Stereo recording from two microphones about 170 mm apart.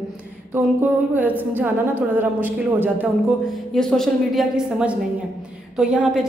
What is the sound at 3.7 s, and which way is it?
A woman's voice, 5° left (ahead or behind).